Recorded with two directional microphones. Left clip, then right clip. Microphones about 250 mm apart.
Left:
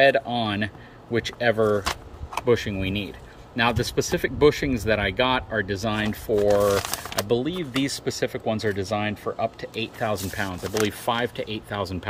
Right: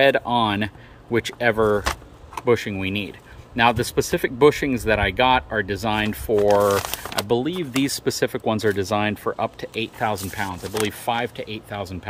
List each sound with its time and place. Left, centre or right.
0.0 s speech: centre